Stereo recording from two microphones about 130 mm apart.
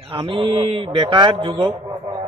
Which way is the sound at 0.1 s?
40° right (ahead or behind).